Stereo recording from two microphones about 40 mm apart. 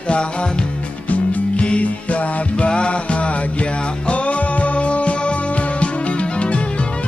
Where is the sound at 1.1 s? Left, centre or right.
Left.